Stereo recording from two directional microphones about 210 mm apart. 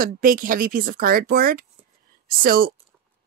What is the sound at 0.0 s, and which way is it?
Speech, 40° right (ahead or behind).